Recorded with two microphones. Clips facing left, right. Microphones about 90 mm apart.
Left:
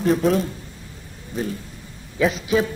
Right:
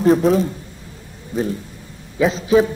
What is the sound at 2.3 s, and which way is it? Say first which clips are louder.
Speech: right 9 dB; 30° right (ahead or behind).